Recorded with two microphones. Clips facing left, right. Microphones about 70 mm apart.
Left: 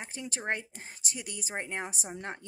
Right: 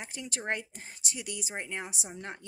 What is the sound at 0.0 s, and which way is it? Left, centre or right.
Speech, left.